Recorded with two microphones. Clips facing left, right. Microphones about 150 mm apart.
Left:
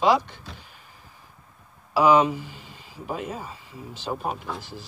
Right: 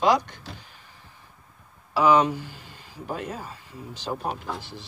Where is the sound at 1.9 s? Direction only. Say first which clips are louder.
Left 1 dB; 10° left (ahead or behind).